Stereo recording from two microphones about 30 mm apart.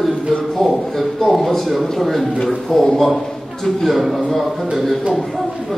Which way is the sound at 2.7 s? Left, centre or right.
Centre.